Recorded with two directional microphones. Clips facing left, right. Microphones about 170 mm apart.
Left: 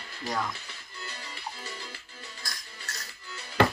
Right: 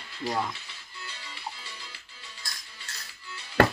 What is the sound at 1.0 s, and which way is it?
Music, 45° left (ahead or behind).